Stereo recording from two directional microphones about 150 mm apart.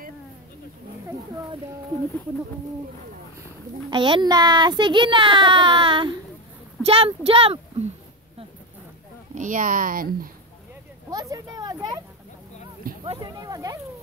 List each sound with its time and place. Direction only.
3.9 s a child's voice: 30° right (ahead or behind)
9.3 s speech: 60° right (ahead or behind)
11.1 s speech: 25° right (ahead or behind)
12.9 s a sound: 70° right (ahead or behind)
13.4 s speech: 25° right (ahead or behind)